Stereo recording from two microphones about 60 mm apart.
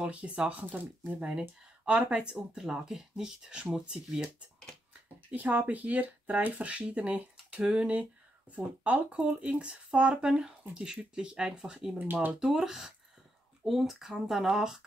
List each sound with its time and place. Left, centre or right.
0.0 s speech: centre
5.3 s speech: right; by 12.0 s centre
12.0 s speech: right
12.4 s speech: centre